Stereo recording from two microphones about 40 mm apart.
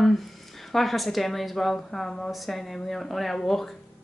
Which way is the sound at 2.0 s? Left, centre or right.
Centre.